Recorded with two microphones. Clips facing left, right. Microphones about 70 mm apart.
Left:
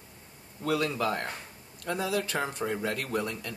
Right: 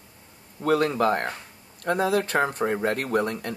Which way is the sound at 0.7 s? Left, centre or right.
Right.